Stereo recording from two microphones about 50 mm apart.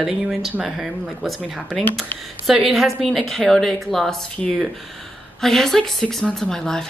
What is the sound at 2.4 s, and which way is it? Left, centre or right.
A woman's voice, centre.